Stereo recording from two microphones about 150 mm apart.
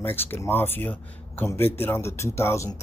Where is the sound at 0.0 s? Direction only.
15° left (ahead or behind).